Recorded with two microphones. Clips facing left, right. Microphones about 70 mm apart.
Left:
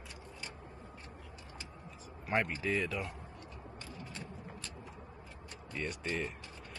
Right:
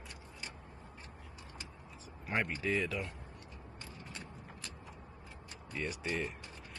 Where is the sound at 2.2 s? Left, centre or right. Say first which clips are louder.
Left 2 dB; centre.